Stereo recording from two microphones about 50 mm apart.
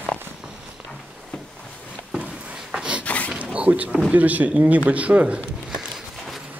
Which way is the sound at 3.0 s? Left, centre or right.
Left.